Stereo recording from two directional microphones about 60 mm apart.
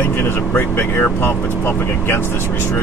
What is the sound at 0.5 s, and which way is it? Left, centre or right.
Speech, left.